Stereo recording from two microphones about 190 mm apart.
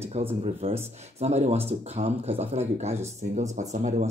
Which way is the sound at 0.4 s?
30° right (ahead or behind).